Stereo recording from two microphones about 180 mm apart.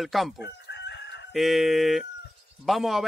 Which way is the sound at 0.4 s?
75° left (ahead or behind).